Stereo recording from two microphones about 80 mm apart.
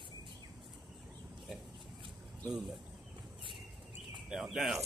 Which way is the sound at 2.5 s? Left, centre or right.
Centre.